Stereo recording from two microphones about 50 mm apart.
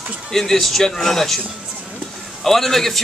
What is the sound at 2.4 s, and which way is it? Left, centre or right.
Speech, centre.